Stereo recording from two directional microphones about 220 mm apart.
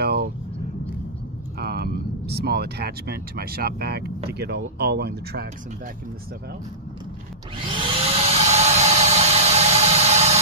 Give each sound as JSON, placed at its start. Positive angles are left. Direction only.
{"t": 0.0, "sound": "vehicle", "side_deg": -45}
{"t": 1.6, "sound": "speech", "side_deg": -45}
{"t": 7.6, "sound": "a sound", "side_deg": -25}